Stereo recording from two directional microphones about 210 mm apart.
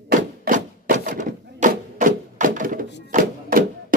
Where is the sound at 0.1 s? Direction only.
40° right (ahead or behind).